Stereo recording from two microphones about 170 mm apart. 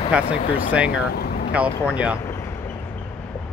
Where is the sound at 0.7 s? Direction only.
5° right (ahead or behind).